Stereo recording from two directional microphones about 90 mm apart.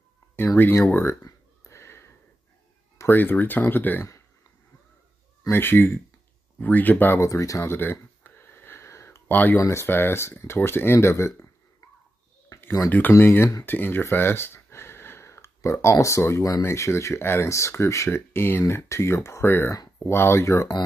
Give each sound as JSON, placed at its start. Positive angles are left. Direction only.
{"t": 0.6, "sound": "speech", "side_deg": 30}
{"t": 1.6, "sound": "a sound", "side_deg": 30}
{"t": 3.1, "sound": "speech", "side_deg": 20}
{"t": 5.5, "sound": "speech", "side_deg": 25}
{"t": 7.2, "sound": "a sound", "side_deg": 35}
{"t": 9.3, "sound": "speech", "side_deg": 20}
{"t": 9.6, "sound": "speech", "side_deg": 30}
{"t": 12.5, "sound": "a sound", "side_deg": 25}
{"t": 13.1, "sound": "speech", "side_deg": 25}